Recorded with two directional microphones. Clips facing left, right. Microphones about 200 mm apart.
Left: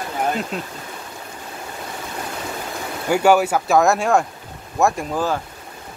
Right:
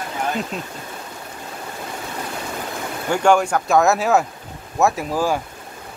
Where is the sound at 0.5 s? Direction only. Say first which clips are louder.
Left 1 dB; centre (ahead or behind).